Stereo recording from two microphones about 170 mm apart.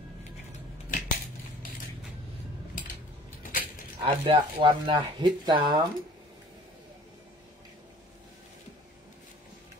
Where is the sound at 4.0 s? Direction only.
30° right (ahead or behind).